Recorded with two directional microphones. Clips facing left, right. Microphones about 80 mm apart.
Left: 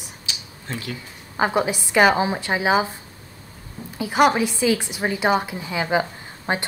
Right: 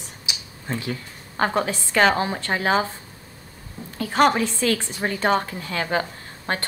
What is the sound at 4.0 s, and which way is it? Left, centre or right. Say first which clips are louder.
Speech: left 1 dB; centre.